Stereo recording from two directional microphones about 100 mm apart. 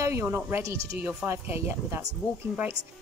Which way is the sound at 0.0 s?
25° right (ahead or behind).